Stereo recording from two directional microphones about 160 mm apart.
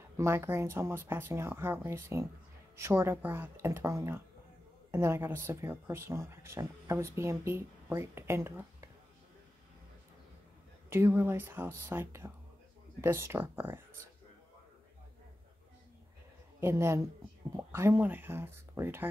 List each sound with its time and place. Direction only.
0.2 s speech: 15° right (ahead or behind)
10.9 s speech: 15° right (ahead or behind)
16.5 s a man's voice: 15° right (ahead or behind)